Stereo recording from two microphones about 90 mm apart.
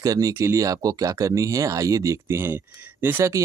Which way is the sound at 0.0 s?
40° right (ahead or behind).